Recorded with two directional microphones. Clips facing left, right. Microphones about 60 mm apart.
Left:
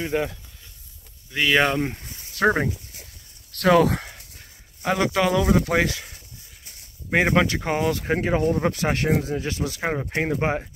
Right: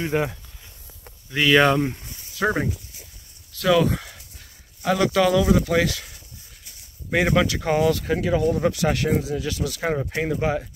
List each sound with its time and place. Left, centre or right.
0.0 s speech: centre
1.3 s speech: centre
2.4 s speech: left
3.5 s speech: left
4.8 s speech: left
7.1 s speech: left
7.6 s speech: left